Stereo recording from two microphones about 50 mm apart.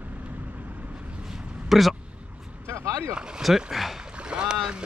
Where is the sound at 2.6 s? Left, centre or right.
Right.